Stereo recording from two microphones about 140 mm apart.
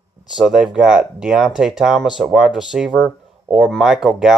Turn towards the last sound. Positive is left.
turn(degrees=-5)  # may be behind; listen again after turning